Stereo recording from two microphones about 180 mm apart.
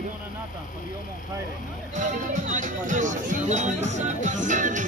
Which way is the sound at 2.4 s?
45° right (ahead or behind).